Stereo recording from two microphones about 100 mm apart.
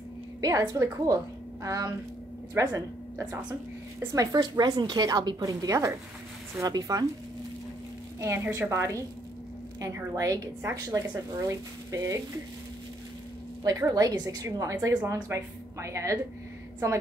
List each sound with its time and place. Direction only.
0.4 s a woman's voice: 35° right (ahead or behind)
8.2 s a woman's voice: 25° right (ahead or behind)
13.7 s a woman's voice: 35° right (ahead or behind)